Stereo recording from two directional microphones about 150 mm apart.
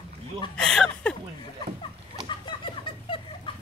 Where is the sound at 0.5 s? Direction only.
5° left (ahead or behind).